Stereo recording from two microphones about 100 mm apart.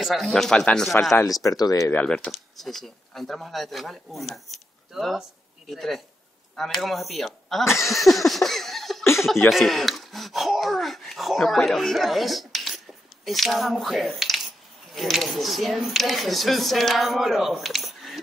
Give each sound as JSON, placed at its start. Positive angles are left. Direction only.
{"t": 0.0, "sound": "speech", "side_deg": 0}
{"t": 1.5, "sound": "speech", "side_deg": 35}
{"t": 1.9, "sound": "speech", "side_deg": 15}
{"t": 7.8, "sound": "a sound", "side_deg": 0}
{"t": 9.0, "sound": "chuckle", "side_deg": 25}
{"t": 9.5, "sound": "speech", "side_deg": 0}